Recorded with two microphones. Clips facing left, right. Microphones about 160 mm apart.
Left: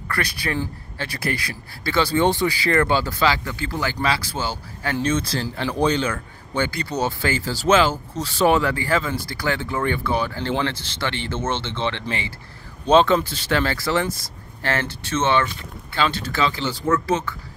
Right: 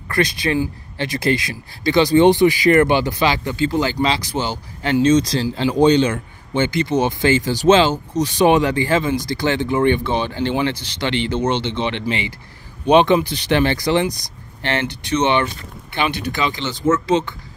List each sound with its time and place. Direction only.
0.1 s speech: 20° right (ahead or behind)